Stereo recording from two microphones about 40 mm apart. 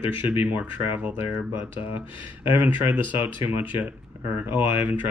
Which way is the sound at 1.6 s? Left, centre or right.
Right.